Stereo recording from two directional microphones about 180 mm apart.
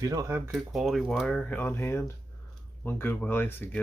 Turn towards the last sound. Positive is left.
turn(degrees=10)  # may be behind; listen again after turning